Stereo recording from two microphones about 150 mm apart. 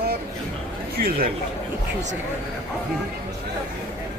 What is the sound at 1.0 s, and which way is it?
Speech, 85° right.